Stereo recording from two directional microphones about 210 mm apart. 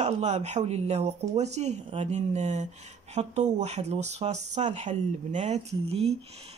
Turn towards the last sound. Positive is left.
turn(degrees=-30)  # may be behind; listen again after turning